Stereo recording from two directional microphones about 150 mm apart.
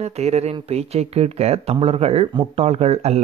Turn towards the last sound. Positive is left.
turn(degrees=-45)  # may be behind; listen again after turning